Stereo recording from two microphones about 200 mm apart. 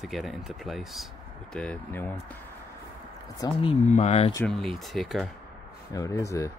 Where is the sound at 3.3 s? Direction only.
25° left (ahead or behind).